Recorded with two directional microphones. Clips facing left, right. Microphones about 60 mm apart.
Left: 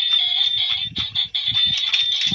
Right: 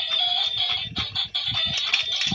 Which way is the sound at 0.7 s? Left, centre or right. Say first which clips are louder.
Left 2 dB; right.